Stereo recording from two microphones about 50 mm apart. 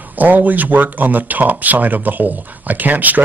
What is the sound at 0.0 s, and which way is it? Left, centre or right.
A man's voice, right.